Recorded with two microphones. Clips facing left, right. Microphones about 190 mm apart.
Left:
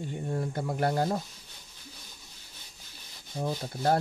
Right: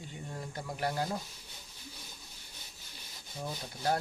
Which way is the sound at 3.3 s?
50° left (ahead or behind).